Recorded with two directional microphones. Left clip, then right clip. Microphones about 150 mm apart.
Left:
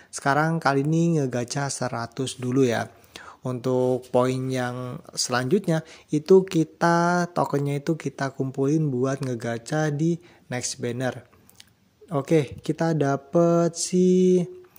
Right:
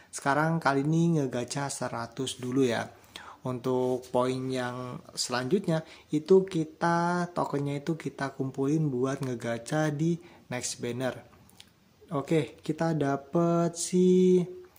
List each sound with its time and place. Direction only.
0.1 s speech: 35° left (ahead or behind)